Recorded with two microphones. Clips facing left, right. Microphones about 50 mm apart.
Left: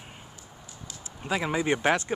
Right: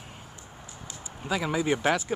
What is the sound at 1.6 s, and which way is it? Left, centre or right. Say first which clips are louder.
Speech: left 1 dB; centre.